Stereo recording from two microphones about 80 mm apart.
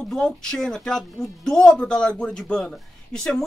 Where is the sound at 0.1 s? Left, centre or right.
Centre.